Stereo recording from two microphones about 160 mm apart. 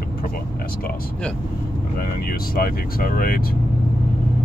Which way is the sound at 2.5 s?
65° left (ahead or behind).